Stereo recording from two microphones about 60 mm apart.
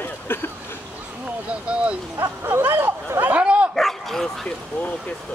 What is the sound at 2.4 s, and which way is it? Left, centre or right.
Vehicle, right.